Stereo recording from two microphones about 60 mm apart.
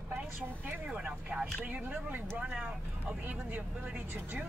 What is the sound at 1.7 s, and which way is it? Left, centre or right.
Speech, right.